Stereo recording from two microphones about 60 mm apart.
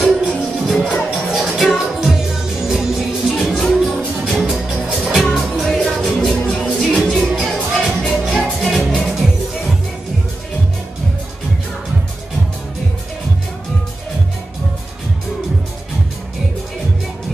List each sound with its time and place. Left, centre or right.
0.4 s music: centre
6.4 s music: centre